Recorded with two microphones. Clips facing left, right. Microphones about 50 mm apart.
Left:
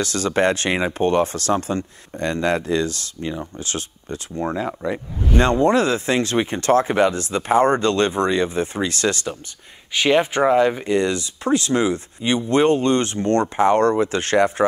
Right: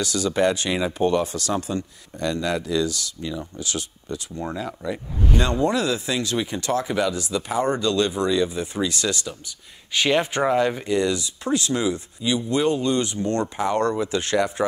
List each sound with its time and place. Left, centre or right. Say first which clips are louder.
0.0 s speech: left 2 dB; left
4.4 s speech: left 8 dB; left
5.3 s speech: left 6 dB; left
9.9 s speech: left 4 dB; centre
10.9 s speech: left 2 dB; left